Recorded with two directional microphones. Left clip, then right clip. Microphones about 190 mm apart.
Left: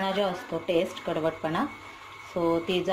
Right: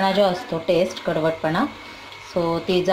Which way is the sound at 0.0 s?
10° right (ahead or behind).